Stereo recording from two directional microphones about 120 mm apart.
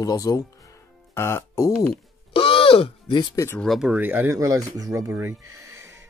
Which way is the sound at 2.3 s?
50° left (ahead or behind).